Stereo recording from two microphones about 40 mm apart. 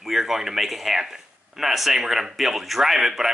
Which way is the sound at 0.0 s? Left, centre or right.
Centre.